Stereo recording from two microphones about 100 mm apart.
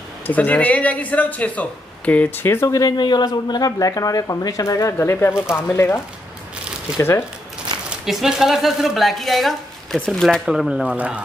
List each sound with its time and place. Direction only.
0.3 s speech: 15° left (ahead or behind)
2.8 s speech: 45° left (ahead or behind); by 5.9 s 25° left (ahead or behind)
7.0 s speech: 25° left (ahead or behind)
8.0 s speech: 5° right (ahead or behind)